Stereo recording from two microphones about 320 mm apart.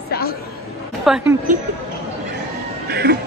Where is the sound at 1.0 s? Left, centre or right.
Centre.